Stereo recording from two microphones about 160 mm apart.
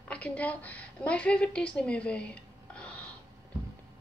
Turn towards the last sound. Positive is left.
turn(degrees=5)  # may be behind; listen again after turning